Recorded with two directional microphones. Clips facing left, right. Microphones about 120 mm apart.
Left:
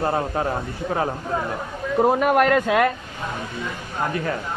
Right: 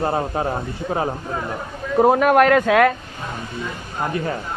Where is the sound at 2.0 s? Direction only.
90° right.